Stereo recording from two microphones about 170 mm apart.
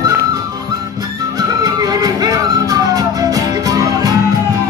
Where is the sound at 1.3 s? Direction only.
20° right (ahead or behind).